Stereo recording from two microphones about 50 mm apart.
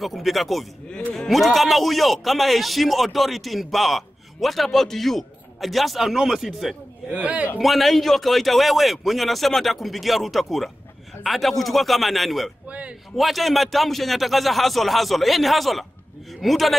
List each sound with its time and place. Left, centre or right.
0.0 s a man's voice: centre
0.8 s a man's voice: centre
7.1 s a man's voice: right
7.5 s a man's voice: centre
12.6 s a man's voice: right
13.1 s a man's voice: centre